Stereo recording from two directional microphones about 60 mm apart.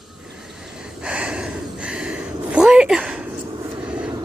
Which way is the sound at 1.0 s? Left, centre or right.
Centre.